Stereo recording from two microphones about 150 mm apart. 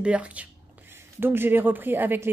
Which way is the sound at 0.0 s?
10° right (ahead or behind).